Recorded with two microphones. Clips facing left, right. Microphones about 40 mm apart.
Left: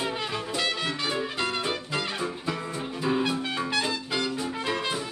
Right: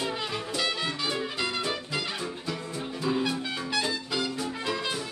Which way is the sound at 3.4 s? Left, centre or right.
Left.